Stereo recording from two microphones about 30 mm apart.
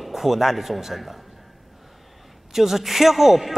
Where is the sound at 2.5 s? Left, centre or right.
Centre.